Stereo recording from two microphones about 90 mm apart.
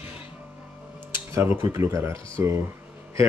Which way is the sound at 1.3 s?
30° right (ahead or behind).